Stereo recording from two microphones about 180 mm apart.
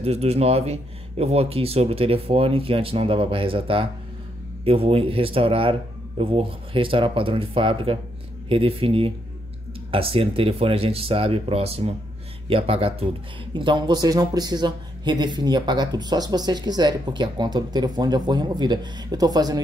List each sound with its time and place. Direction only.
0.0 s speech: 35° right (ahead or behind)